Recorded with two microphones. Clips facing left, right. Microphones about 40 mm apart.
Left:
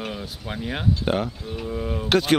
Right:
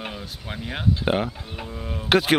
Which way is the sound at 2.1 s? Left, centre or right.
Centre.